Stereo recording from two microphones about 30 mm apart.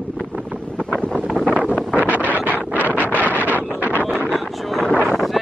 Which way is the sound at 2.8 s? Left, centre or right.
Left.